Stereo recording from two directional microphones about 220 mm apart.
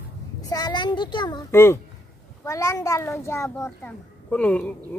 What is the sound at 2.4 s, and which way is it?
A child's voice, 15° left (ahead or behind).